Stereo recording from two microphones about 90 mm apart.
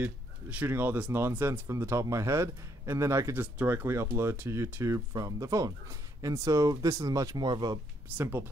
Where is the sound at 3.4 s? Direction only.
20° right (ahead or behind); by 7.7 s 50° right (ahead or behind).